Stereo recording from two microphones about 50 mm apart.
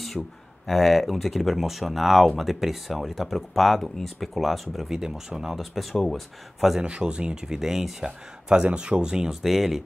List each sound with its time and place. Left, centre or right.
0.2 s speech: centre
6.8 s speech: centre